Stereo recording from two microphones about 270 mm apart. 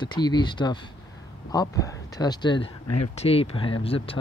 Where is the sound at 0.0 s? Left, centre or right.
Centre.